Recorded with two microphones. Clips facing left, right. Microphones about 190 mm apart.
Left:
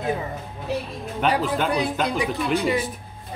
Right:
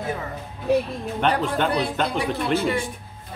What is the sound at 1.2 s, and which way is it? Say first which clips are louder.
A man's voice: even; 5° left (ahead or behind).